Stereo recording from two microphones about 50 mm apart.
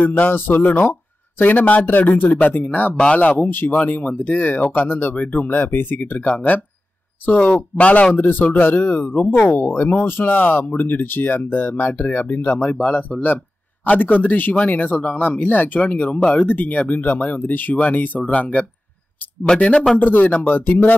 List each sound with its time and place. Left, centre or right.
0.0 s speech: left
3.7 s speech: left
5.1 s speech: left
19.4 s speech: centre
20.0 s speech: left